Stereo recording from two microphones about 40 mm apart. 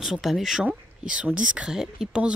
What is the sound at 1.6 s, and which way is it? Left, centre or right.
Speech, centre.